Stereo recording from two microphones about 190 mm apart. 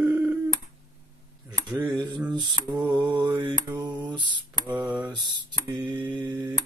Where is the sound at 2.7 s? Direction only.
20° right (ahead or behind).